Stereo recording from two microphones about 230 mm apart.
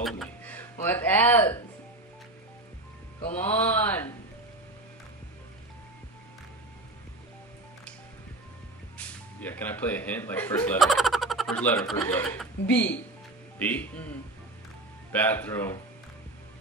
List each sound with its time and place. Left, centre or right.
0.0 s a sound: centre
3.3 s speech: centre
8.9 s speech: centre
15.1 s speech: centre